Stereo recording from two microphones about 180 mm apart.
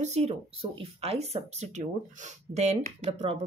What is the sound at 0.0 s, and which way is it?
Speech, 35° right (ahead or behind).